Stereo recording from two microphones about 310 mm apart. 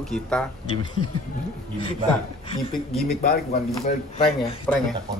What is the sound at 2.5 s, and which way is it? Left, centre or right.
Speech, centre.